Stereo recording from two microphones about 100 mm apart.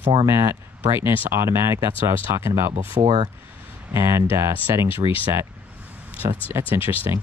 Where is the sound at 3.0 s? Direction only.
60° right (ahead or behind).